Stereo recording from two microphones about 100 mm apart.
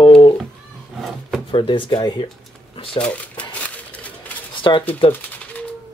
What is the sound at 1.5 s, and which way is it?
Speech, 55° left (ahead or behind).